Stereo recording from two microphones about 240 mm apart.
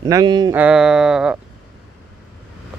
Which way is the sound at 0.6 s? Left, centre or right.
Centre.